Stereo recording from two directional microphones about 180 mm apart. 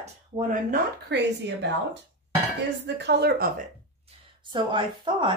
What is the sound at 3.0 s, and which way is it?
Speech, 70° right (ahead or behind).